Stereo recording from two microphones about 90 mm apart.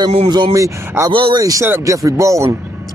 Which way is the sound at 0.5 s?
35° right (ahead or behind).